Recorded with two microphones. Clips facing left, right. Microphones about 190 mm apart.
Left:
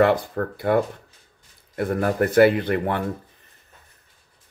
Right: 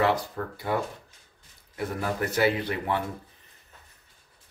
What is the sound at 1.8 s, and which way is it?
Speech, 55° left (ahead or behind).